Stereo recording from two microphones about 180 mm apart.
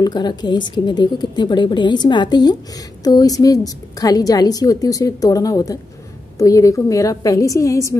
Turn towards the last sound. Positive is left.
turn(degrees=15)  # may be behind; listen again after turning